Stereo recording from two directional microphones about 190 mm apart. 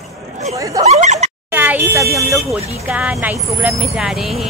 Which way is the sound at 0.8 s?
35° right (ahead or behind).